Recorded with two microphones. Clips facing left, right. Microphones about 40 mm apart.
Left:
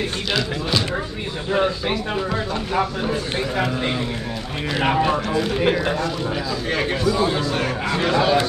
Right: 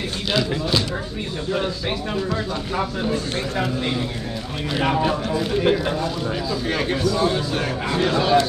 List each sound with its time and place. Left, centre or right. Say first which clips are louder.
0.3 s speech: right 3 dB; centre
3.1 s a man's voice: left 1 dB; centre
5.6 s a man's voice: right 2 dB; centre